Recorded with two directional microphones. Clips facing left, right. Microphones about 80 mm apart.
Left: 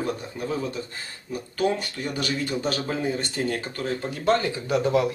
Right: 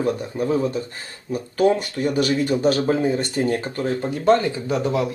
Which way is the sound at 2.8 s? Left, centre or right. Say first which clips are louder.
Right 7 dB; right.